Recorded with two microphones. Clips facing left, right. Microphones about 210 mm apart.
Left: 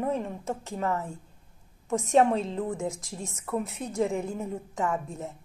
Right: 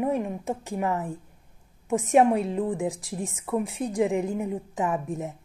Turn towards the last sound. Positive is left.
turn(degrees=-20)  # may be behind; listen again after turning